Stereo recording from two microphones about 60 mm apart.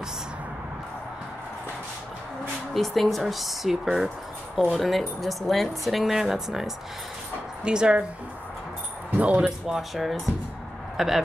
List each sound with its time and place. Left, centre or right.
2.7 s speech: centre
9.1 s speech: right
9.7 s speech: centre